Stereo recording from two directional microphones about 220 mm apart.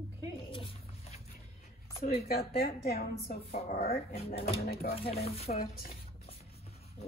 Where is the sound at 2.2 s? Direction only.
45° left (ahead or behind).